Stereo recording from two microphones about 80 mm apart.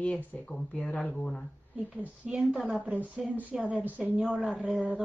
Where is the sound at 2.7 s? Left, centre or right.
Centre.